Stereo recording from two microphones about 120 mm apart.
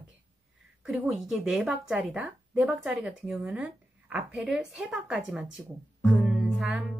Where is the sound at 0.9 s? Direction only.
5° right (ahead or behind).